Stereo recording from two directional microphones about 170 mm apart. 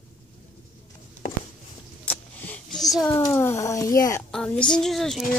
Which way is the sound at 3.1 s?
15° left (ahead or behind).